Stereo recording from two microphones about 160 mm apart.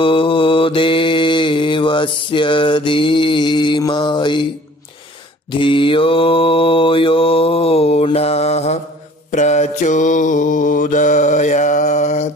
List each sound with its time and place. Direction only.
0.0 s mantra: 35° left (ahead or behind)
5.5 s mantra: 30° left (ahead or behind); by 12.3 s 45° left (ahead or behind)